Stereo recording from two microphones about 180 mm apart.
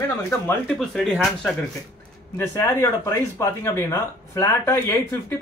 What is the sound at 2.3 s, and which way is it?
Speech, 15° left (ahead or behind).